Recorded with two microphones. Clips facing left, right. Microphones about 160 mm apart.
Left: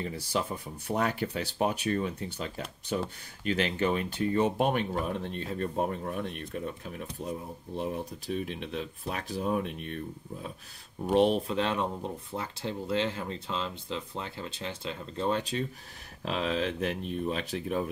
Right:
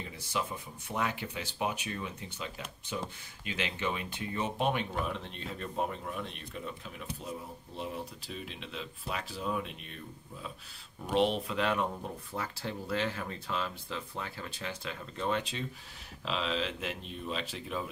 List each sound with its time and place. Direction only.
0.0 s speech: 35° left (ahead or behind); by 10.5 s 55° left (ahead or behind)
11.1 s speech: 40° left (ahead or behind)
11.5 s speech: 25° left (ahead or behind)
16.3 s speech: 50° left (ahead or behind)